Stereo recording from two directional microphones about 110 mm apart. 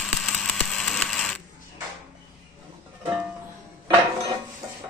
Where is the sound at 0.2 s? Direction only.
Centre (ahead or behind).